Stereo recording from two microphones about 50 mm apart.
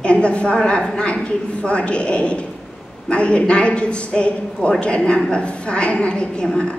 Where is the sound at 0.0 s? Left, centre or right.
Left.